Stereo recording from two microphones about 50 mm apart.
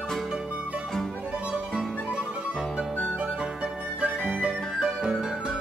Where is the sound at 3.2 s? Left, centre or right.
Right.